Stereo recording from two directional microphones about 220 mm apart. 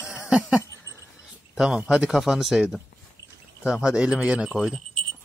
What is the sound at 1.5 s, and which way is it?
Speech, 5° right (ahead or behind).